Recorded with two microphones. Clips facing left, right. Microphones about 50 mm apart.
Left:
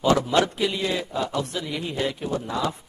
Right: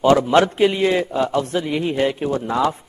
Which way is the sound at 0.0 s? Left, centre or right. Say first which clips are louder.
Right 6 dB; right.